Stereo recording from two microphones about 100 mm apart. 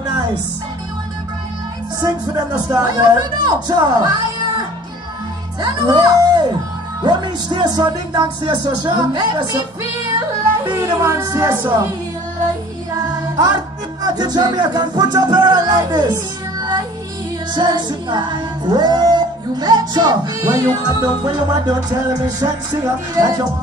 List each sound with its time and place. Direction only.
2.0 s speech: 45° right (ahead or behind)
5.6 s music: 45° right (ahead or behind)
10.8 s speech: 40° right (ahead or behind)
14.0 s music: 45° right (ahead or behind)